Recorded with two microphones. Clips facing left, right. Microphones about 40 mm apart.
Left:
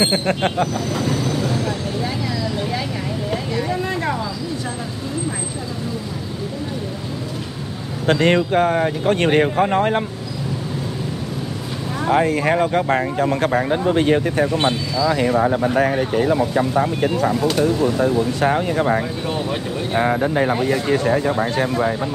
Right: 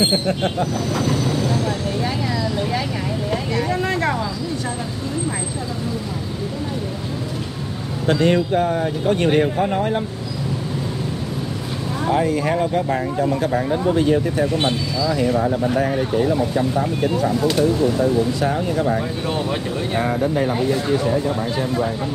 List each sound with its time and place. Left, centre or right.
0.0 s speech: left
3.7 s a sound: right
8.1 s speech: left
12.1 s speech: left
19.2 s speech: centre
20.0 s speech: left
20.9 s speech: left